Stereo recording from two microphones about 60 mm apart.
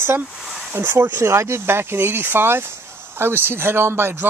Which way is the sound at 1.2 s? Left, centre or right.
Right.